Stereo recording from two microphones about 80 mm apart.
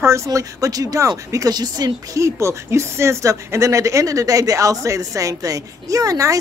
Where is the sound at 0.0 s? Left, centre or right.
Right.